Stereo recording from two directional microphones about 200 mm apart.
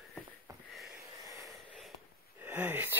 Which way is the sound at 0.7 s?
Centre (ahead or behind).